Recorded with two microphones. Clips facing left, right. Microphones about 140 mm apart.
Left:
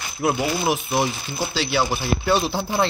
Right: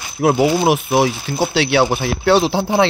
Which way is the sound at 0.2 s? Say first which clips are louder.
Right 8 dB; 65° right (ahead or behind).